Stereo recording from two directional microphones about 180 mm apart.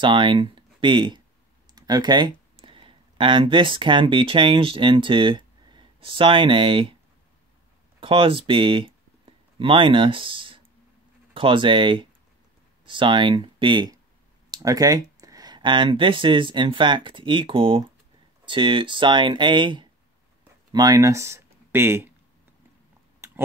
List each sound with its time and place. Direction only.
0.0 s speech: 25° right (ahead or behind)
8.0 s speech: 30° right (ahead or behind); by 22.1 s 15° right (ahead or behind)